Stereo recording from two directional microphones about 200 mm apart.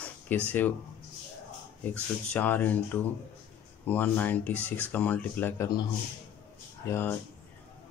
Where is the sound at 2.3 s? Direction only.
10° left (ahead or behind).